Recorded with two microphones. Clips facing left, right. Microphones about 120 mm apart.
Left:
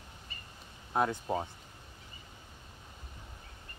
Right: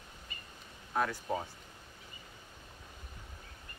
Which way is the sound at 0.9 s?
25° left (ahead or behind).